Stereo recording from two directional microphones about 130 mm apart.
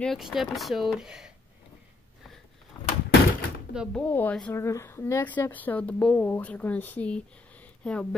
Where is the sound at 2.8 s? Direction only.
30° left (ahead or behind).